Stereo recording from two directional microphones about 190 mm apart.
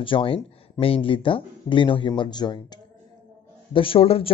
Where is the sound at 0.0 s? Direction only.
25° left (ahead or behind).